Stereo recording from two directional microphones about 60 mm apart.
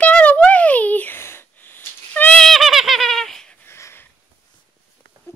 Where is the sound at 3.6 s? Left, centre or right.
Left.